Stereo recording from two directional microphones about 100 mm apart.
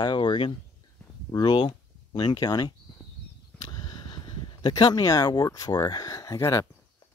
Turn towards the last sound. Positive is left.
turn(degrees=30)  # may be behind; listen again after turning